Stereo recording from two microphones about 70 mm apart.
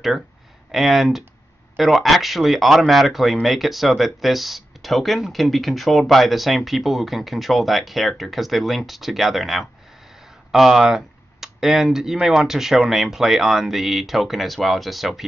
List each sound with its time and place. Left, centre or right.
0.7 s speech: centre